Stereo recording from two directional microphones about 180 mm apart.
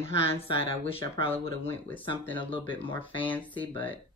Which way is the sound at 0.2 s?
35° left (ahead or behind).